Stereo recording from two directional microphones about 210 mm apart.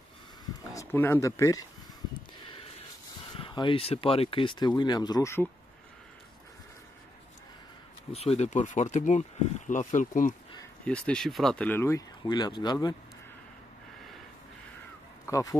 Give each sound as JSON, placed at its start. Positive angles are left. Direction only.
{"t": 0.7, "sound": "speech", "side_deg": 10}
{"t": 2.4, "sound": "a sound", "side_deg": 25}
{"t": 3.3, "sound": "speech", "side_deg": 25}
{"t": 8.1, "sound": "speech", "side_deg": 30}
{"t": 10.9, "sound": "speech", "side_deg": 5}
{"t": 15.2, "sound": "speech", "side_deg": 15}